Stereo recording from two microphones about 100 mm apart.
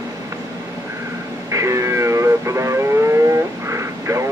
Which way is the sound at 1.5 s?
30° right (ahead or behind).